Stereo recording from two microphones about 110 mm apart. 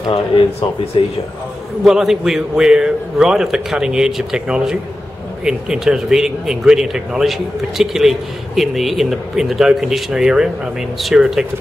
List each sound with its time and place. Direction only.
1.0 s speech: 55° left (ahead or behind)
1.9 s speech: 5° right (ahead or behind)